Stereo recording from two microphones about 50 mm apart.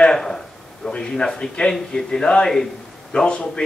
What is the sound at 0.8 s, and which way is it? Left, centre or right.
A man's voice, centre.